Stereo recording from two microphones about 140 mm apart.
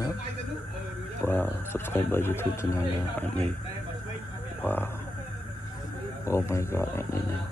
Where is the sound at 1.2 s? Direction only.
15° left (ahead or behind).